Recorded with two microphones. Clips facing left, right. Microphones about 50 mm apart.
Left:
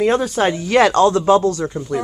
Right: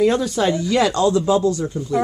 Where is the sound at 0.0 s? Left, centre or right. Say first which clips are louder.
Left 1 dB; left.